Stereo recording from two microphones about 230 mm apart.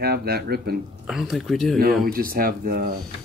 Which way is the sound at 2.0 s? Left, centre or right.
Right.